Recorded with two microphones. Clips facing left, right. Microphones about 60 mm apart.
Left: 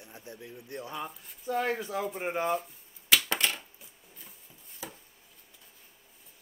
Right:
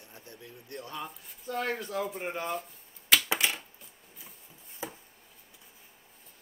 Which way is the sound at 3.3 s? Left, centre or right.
Centre.